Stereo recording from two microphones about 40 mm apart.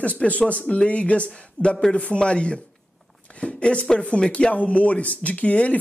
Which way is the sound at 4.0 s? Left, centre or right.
Left.